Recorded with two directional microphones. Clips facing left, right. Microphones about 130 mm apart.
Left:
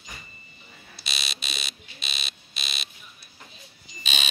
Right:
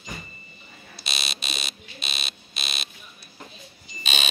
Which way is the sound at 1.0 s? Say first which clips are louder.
Right 3 dB; 45° right (ahead or behind).